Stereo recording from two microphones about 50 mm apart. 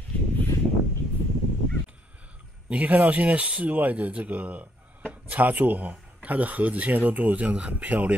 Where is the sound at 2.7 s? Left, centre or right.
Right.